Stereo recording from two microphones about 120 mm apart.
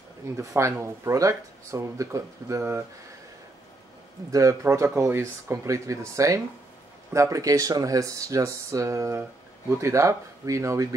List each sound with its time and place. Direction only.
0.4 s speech: 25° right (ahead or behind)
4.3 s speech: 25° right (ahead or behind)